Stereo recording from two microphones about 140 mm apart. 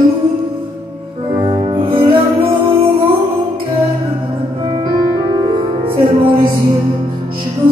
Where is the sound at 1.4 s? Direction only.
40° right (ahead or behind).